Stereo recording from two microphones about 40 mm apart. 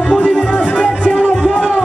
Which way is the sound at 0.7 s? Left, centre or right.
Left.